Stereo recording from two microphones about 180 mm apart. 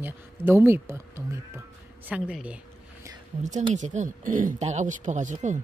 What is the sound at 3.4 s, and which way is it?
Speech, 40° right (ahead or behind).